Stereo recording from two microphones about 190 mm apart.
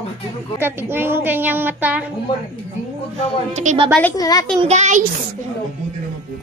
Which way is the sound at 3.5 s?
30° right (ahead or behind).